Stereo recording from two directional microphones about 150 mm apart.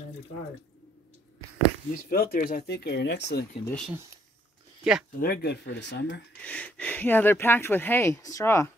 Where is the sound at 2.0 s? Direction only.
80° left.